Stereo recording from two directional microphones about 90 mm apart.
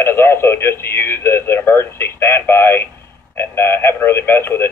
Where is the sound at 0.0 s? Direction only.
25° left (ahead or behind).